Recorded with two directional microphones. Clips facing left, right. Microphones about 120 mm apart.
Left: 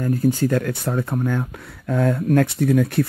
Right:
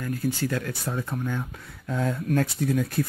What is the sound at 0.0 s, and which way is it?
Speech, 40° left (ahead or behind).